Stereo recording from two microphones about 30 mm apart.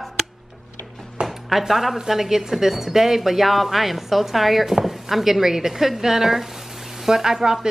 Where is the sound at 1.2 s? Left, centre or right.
Right.